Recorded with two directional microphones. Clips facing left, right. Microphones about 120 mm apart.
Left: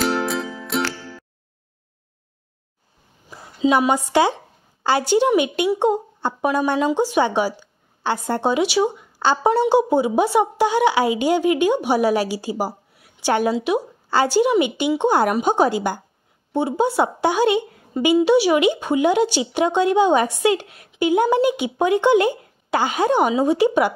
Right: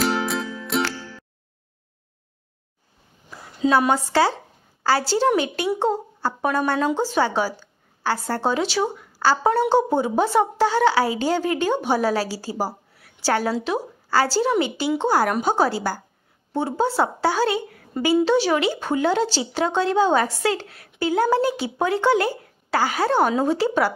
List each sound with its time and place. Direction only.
0.0 s music: centre (ahead or behind)
3.3 s a sound: 15° left (ahead or behind)
3.9 s a woman's voice: 15° left (ahead or behind)